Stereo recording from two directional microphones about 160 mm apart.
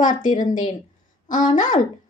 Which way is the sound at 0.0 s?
55° left (ahead or behind).